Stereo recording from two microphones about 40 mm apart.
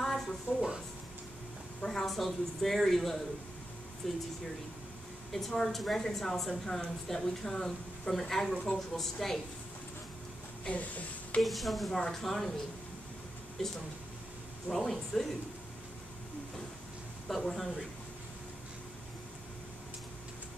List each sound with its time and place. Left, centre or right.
0.0 s a sound: centre
1.9 s a woman's voice: centre
5.3 s a woman's voice: centre
10.7 s a sound: left
11.4 s a woman's voice: centre
14.7 s a woman's voice: centre
17.5 s a woman's voice: centre